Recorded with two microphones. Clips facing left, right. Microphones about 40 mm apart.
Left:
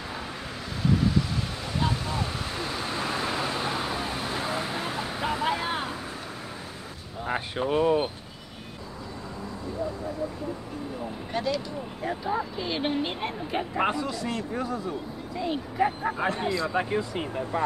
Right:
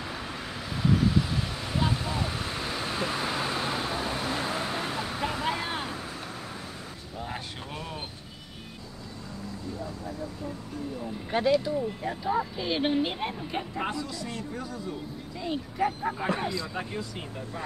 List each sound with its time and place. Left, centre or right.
1.8 s vehicle: centre
7.2 s speech: left
11.3 s speech: centre
12.0 s speech: centre
13.7 s speech: left
15.3 s speech: centre
16.7 s speech: left